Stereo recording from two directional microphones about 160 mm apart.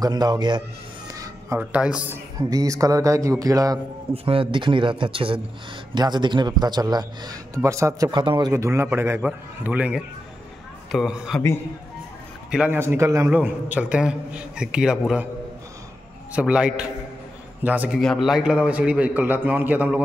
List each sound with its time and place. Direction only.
0.0 s a man's voice: 25° right (ahead or behind)
1.0 s a sound: 20° right (ahead or behind)
1.6 s a man's voice: 10° right (ahead or behind)
2.5 s a man's voice: 20° right (ahead or behind)
4.1 s a man's voice: 35° right (ahead or behind); by 11.4 s 5° right (ahead or behind)
12.4 s a man's voice: 5° right (ahead or behind)
16.3 s a man's voice: 5° right (ahead or behind)